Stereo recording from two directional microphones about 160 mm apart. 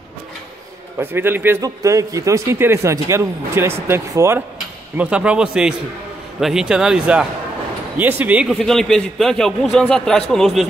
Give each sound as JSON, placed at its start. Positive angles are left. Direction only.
{"t": 0.9, "sound": "a man's voice", "side_deg": -15}
{"t": 8.5, "sound": "a man's voice", "side_deg": 5}